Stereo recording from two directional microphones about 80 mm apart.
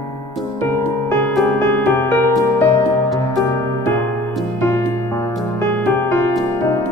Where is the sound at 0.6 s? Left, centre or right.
Left.